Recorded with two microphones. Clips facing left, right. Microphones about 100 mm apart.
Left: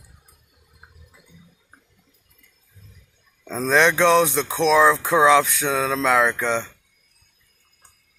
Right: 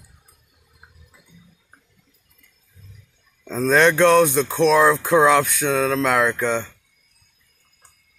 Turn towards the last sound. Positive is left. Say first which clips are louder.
# right 1 dB
turn(degrees=-5)  # may be behind; listen again after turning